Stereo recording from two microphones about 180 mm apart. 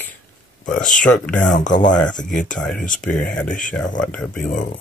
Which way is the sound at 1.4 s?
45° left (ahead or behind).